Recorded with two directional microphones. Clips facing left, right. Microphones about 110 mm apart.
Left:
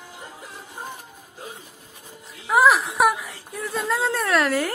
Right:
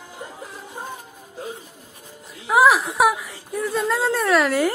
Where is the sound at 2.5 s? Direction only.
Centre (ahead or behind).